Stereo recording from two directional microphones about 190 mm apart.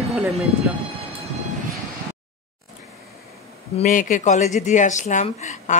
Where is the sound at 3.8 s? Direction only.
45° left (ahead or behind).